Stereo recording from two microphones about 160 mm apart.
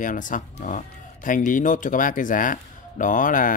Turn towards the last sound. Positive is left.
turn(degrees=55)  # may be behind; listen again after turning